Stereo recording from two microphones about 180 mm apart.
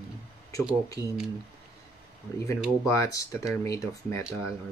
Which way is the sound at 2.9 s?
20° left (ahead or behind).